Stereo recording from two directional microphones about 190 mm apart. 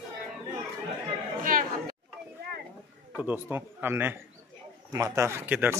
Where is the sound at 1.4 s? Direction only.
45° right (ahead or behind).